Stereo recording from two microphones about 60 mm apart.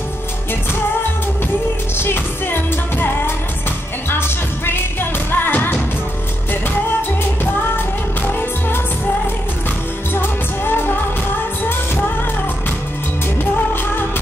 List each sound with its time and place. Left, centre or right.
2.0 s music: left
10.1 s music: left